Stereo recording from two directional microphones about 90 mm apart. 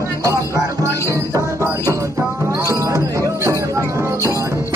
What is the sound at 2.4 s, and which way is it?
Music, 35° right (ahead or behind).